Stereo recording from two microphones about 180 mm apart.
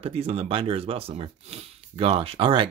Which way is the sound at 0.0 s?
35° right (ahead or behind).